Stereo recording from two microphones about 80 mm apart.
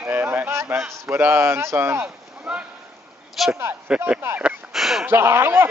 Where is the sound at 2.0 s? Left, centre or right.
Centre.